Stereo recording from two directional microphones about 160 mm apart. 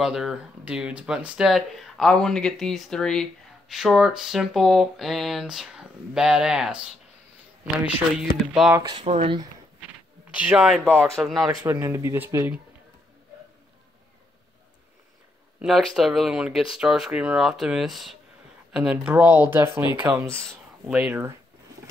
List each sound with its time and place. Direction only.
0.0 s speech: 5° right (ahead or behind)
8.7 s speech: 25° right (ahead or behind)
9.0 s speech: 45° right (ahead or behind)
10.3 s speech: 5° right (ahead or behind)
11.6 s speech: 20° right (ahead or behind)
15.6 s speech: centre (ahead or behind)